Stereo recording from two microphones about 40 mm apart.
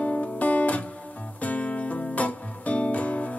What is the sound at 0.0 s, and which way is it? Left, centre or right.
Guitar, left.